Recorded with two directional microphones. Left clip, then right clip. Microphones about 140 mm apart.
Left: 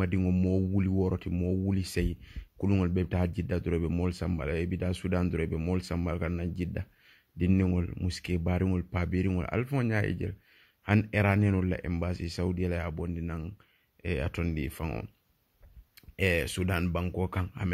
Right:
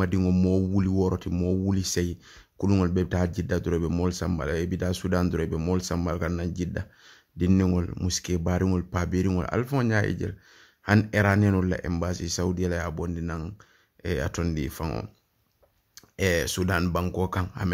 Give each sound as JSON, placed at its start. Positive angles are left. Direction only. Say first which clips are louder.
{"t": 0.0, "sound": "speech", "louder": "right 5 dB", "side_deg": 10}
{"t": 1.3, "sound": "speech", "louder": "right 5 dB", "side_deg": 5}
{"t": 1.8, "sound": "speech", "louder": "right 5 dB", "side_deg": 20}
{"t": 2.6, "sound": "speech", "louder": "right 5 dB", "side_deg": 5}
{"t": 8.2, "sound": "speech", "louder": "right 4 dB", "side_deg": 20}
{"t": 16.2, "sound": "speech", "louder": "right 4 dB", "side_deg": 15}